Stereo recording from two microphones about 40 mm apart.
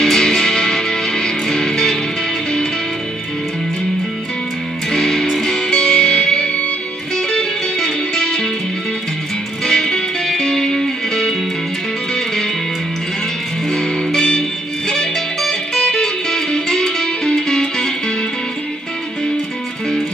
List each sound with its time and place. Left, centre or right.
0.0 s music: centre
4.9 s music: centre
9.7 s music: centre
13.7 s music: centre
15.7 s music: centre